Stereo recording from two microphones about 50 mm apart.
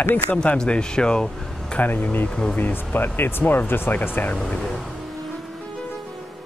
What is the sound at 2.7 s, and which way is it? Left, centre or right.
Speech, left.